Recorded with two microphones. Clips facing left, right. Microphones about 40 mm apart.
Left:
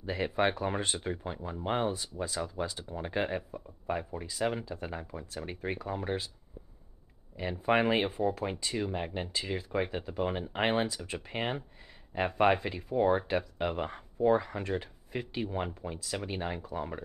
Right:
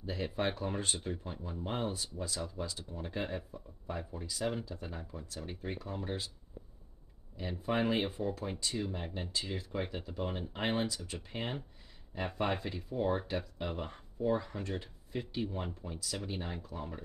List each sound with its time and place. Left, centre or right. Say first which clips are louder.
0.0 s speech: left 6 dB; left
2.2 s speech: left 6 dB; left
2.9 s speech: left 7 dB; left
5.8 s speech: left 5 dB; left
7.3 s speech: left 6 dB; left
9.8 s speech: left 5 dB; left
10.1 s speech: left 7 dB; left
12.6 s speech: left 6 dB; left